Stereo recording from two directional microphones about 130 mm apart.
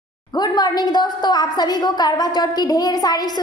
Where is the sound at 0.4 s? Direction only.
35° left (ahead or behind).